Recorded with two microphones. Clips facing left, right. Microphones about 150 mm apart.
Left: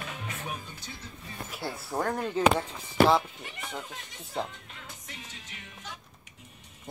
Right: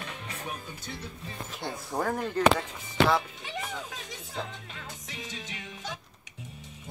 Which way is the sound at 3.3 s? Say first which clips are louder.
Right 3 dB; 90° right.